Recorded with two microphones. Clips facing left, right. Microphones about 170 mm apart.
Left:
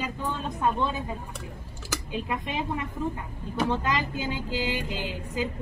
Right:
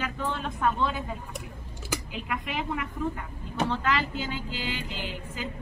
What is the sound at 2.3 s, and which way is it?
Speech, 25° left (ahead or behind).